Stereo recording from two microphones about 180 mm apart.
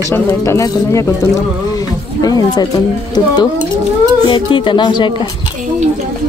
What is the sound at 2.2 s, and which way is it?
Speech, 20° left (ahead or behind).